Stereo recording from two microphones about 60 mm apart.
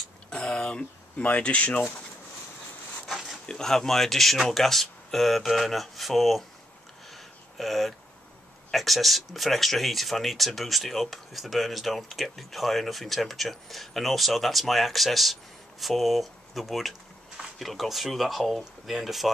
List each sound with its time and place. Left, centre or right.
0.3 s speech: centre
3.4 s speech: centre
7.1 s a sound: centre
8.7 s speech: centre